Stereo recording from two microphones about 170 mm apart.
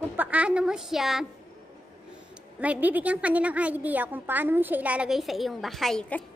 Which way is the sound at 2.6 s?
10° right (ahead or behind).